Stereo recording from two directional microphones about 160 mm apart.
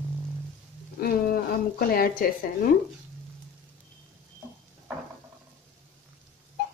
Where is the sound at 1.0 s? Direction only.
65° left (ahead or behind).